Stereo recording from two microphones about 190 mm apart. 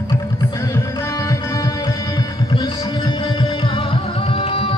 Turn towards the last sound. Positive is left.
turn(degrees=30)  # may be behind; listen again after turning